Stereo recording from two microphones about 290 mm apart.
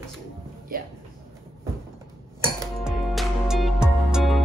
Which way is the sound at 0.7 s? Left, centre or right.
Right.